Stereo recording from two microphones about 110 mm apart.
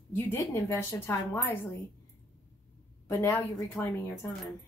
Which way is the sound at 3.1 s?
25° left (ahead or behind).